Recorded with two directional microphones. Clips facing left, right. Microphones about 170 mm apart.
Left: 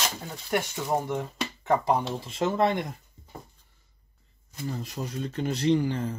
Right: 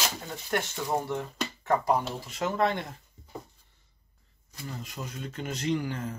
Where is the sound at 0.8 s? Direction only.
20° left (ahead or behind).